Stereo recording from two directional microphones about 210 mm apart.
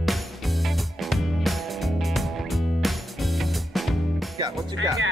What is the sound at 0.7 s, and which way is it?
Music, centre (ahead or behind).